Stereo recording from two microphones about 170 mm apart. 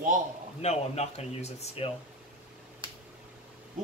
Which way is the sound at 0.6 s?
40° left (ahead or behind).